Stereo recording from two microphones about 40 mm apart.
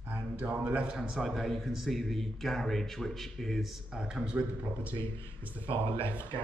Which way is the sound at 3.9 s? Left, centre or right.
Right.